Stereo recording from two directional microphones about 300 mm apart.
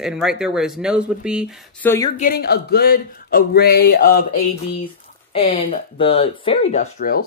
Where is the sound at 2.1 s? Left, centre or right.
Left.